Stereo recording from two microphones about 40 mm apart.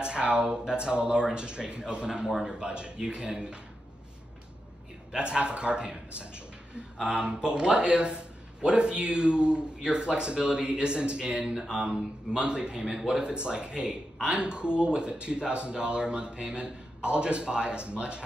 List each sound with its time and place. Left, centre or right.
0.0 s speech: right
5.1 s speech: right